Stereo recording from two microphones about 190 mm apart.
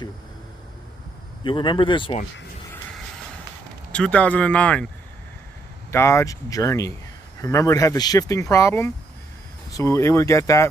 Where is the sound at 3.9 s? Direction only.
5° left (ahead or behind).